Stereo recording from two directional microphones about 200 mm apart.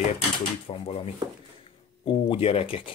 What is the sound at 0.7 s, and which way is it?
Speech, 30° left (ahead or behind).